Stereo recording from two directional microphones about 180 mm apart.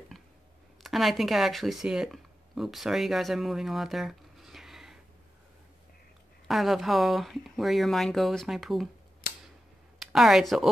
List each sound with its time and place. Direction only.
0.8 s speech: centre (ahead or behind)
6.4 s speech: centre (ahead or behind)
9.9 s a woman's voice: centre (ahead or behind)